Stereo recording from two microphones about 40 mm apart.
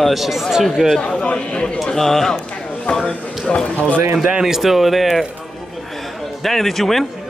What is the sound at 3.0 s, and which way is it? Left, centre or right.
Speech, left.